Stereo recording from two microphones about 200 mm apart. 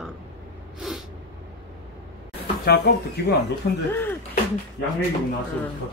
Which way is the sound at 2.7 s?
55° left (ahead or behind).